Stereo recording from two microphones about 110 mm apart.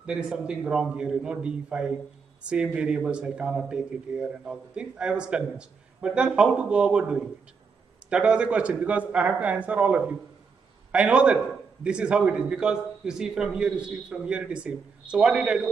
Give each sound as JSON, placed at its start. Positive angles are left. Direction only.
{"t": 0.0, "sound": "speech", "side_deg": -5}